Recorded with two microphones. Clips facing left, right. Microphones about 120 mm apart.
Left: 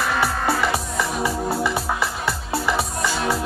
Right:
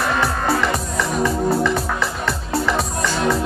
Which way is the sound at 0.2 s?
5° left (ahead or behind).